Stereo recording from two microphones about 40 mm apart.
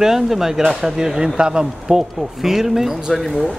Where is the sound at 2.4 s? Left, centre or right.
Centre.